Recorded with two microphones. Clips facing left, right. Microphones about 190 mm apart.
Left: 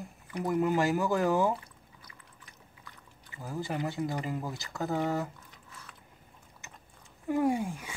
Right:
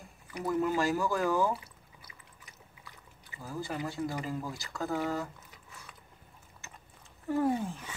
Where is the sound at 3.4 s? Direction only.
20° left (ahead or behind).